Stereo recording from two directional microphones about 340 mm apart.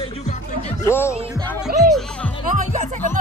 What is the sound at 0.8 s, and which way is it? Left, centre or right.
Speech, centre.